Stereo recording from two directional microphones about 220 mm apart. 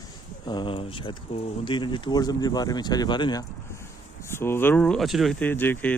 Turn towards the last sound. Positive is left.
turn(degrees=10)  # may be behind; listen again after turning